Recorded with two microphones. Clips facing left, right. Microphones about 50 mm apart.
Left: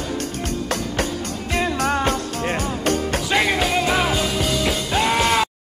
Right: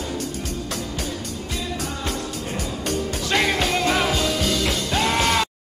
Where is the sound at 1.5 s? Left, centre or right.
Left.